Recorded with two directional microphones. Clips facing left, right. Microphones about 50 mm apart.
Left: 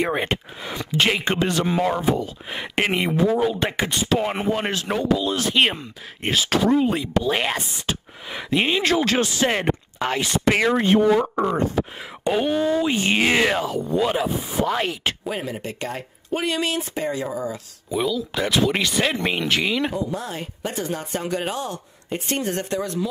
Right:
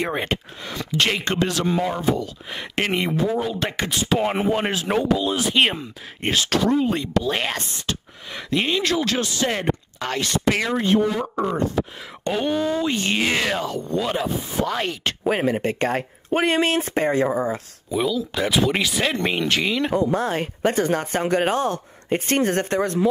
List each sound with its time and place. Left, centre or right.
0.0 s speech: centre
4.1 s speech: centre
8.9 s speech: left; by 15.1 s centre
15.2 s speech: right
17.8 s speech: centre
20.0 s speech: right